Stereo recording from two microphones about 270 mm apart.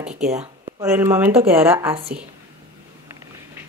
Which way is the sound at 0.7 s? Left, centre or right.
Centre.